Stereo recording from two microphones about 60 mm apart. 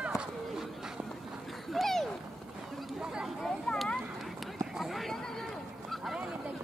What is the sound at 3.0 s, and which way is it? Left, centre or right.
Chatter, centre.